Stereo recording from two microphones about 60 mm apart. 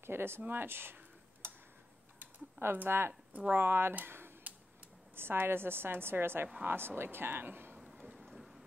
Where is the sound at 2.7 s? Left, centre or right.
Right.